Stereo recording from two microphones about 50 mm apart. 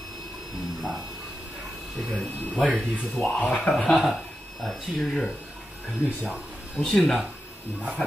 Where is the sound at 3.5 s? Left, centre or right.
Centre.